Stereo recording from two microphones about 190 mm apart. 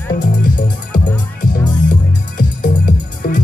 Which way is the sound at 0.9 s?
45° left (ahead or behind).